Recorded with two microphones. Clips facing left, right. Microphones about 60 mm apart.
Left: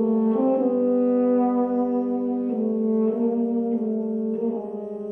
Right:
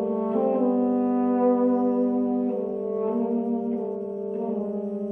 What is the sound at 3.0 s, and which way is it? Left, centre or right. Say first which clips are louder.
Brass instrument: left 3 dB; centre.